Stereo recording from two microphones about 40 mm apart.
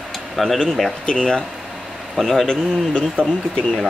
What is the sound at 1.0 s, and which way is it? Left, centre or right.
Speech, centre.